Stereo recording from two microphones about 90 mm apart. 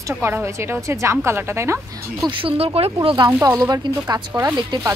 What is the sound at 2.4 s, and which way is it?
Speech, 90° right.